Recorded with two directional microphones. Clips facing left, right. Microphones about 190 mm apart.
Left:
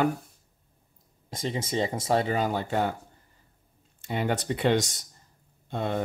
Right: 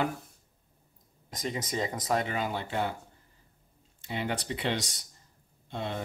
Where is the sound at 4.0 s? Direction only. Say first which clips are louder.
Left 5 dB; 45° left (ahead or behind).